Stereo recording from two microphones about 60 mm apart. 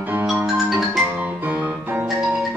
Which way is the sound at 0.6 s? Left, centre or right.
Centre.